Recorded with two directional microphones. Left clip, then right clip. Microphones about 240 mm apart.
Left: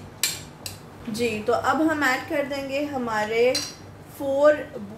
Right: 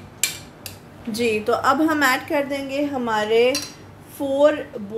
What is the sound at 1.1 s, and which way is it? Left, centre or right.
A woman's voice, right.